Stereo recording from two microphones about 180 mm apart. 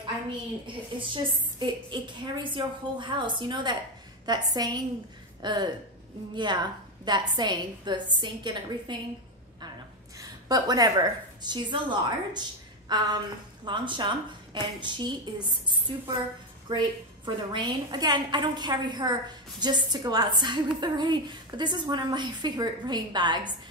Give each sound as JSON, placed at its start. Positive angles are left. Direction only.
{"t": 0.9, "sound": "a woman's voice", "side_deg": -25}
{"t": 10.1, "sound": "a woman's voice", "side_deg": -20}